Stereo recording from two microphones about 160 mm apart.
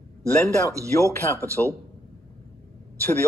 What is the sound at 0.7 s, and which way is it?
Speech, 20° right (ahead or behind).